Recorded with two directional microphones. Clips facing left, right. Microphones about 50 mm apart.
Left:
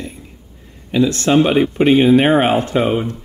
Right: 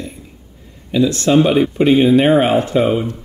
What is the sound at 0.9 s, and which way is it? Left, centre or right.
Speech, left.